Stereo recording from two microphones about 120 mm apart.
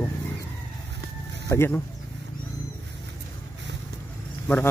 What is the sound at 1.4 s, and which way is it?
Speech, 20° left (ahead or behind).